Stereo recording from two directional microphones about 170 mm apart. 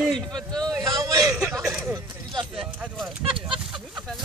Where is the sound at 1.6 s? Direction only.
Centre (ahead or behind).